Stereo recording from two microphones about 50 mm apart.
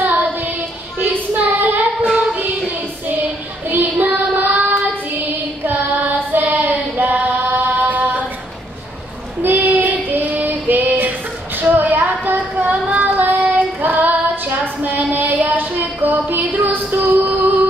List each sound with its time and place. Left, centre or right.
0.0 s child singing: right
3.6 s child singing: right
5.7 s female singing: right
9.4 s child singing: right
10.2 s female singing: right
12.9 s child singing: right